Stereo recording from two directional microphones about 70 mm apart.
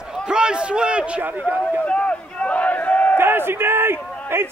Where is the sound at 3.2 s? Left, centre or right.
Right.